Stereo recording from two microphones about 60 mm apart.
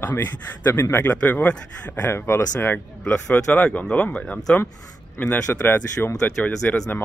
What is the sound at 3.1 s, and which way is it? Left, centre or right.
Speech, centre.